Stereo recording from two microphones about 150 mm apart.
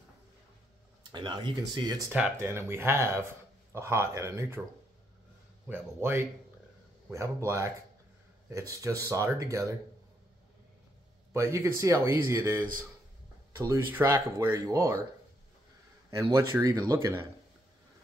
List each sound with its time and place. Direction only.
1.1 s speech: 30° right (ahead or behind)
2.0 s speech: 10° right (ahead or behind)
5.7 s speech: 15° right (ahead or behind)
11.3 s speech: 20° right (ahead or behind)
16.1 s speech: 20° right (ahead or behind)